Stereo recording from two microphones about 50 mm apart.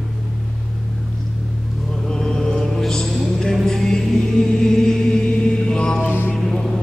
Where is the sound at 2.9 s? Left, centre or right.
Centre.